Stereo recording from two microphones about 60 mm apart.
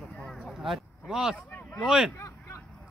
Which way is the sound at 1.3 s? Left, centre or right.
Left.